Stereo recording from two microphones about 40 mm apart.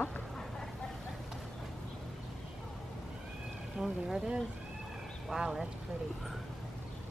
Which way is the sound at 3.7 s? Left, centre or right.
Centre.